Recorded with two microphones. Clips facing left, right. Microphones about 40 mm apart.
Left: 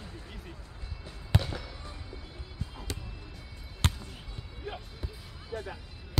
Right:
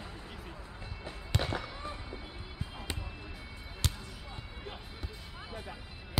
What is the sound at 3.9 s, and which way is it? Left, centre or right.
Basketball bounce, centre.